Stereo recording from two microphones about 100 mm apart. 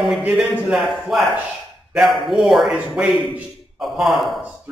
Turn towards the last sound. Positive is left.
turn(degrees=0)  # may be behind; listen again after turning